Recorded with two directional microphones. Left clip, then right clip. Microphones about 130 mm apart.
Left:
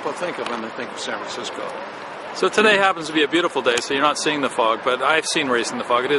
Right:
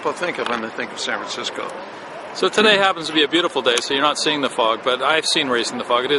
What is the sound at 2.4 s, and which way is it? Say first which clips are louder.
Speech: right 1 dB; centre (ahead or behind).